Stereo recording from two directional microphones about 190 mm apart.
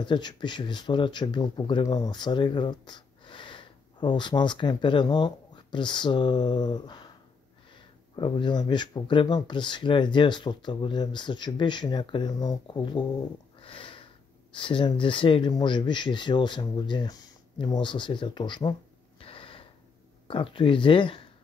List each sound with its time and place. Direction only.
0.0 s speech: 25° left (ahead or behind)
8.2 s speech: 25° left (ahead or behind)
13.6 s sniff: 30° left (ahead or behind)
14.5 s speech: 25° left (ahead or behind)